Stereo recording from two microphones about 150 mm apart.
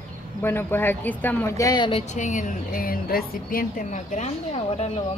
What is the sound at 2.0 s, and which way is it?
A woman's voice, 55° left (ahead or behind).